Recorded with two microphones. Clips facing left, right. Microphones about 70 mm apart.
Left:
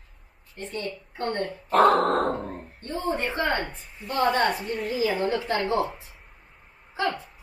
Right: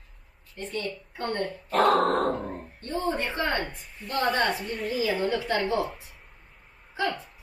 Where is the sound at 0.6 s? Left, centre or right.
Left.